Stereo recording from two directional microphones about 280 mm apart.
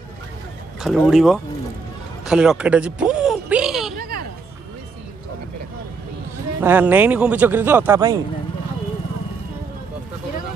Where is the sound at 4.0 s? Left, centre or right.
Right.